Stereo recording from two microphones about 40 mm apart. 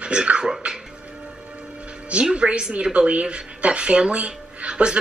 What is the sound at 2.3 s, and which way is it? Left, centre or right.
Speech, right.